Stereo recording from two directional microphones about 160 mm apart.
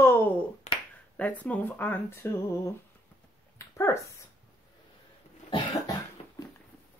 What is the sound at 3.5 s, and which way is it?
Dog, 20° left (ahead or behind).